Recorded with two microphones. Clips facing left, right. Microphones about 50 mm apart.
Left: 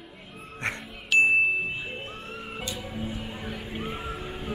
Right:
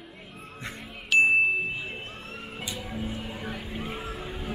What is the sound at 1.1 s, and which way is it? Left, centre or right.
Music, centre.